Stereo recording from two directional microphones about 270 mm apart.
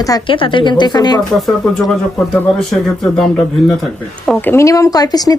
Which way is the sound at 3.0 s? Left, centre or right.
Centre.